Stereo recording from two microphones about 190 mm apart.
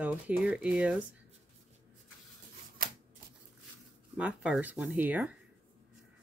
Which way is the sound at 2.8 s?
50° right (ahead or behind).